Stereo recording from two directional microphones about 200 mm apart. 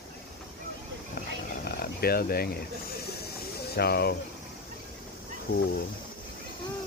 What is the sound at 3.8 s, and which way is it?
Speech, 55° left (ahead or behind).